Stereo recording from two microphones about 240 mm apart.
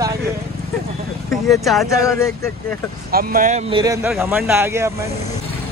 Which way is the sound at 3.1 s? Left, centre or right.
Right.